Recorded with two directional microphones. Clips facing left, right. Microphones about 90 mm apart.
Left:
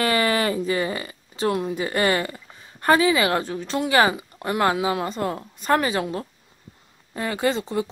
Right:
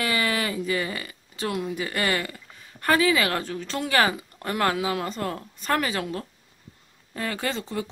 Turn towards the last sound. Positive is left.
turn(degrees=20)  # may be behind; listen again after turning